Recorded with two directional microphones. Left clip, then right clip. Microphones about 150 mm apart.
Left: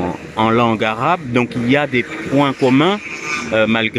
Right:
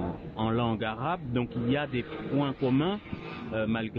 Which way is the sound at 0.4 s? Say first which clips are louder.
Left 16 dB; 40° left (ahead or behind).